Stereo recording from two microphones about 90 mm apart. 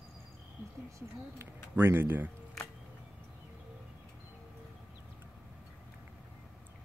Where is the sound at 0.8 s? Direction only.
35° right (ahead or behind).